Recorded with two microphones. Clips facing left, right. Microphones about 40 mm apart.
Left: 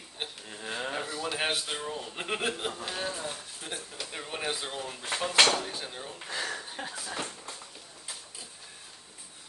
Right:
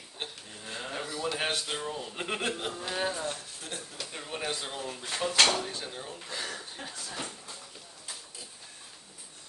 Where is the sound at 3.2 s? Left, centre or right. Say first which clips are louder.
Right 1 dB; centre.